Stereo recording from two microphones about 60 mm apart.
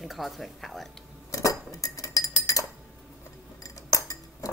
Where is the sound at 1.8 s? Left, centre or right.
Left.